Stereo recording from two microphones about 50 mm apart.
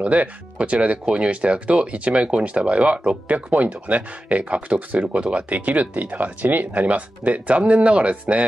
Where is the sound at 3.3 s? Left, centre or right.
Right.